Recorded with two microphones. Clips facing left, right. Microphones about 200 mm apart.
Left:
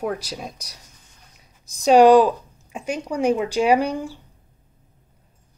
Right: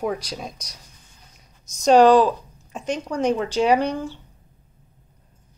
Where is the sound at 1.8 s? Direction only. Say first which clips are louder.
Left 1 dB; 10° left (ahead or behind).